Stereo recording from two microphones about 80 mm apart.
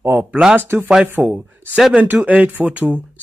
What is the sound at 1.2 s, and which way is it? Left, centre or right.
Speech, centre.